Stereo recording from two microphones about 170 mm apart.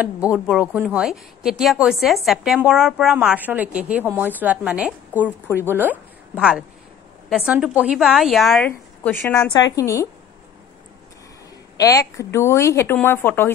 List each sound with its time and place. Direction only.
0.0 s a woman's voice: 5° right (ahead or behind); by 10.0 s 20° left (ahead or behind)
11.8 s speech: 20° left (ahead or behind)